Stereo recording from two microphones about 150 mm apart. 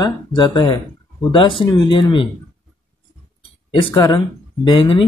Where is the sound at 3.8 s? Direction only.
30° left (ahead or behind).